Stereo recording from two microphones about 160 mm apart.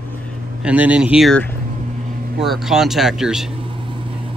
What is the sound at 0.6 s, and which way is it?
Speech, 10° right (ahead or behind).